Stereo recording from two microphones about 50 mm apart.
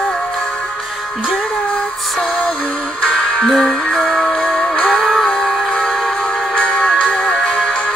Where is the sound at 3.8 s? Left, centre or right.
Centre.